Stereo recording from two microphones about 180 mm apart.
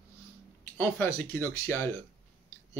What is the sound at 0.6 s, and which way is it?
Speech, 10° left (ahead or behind).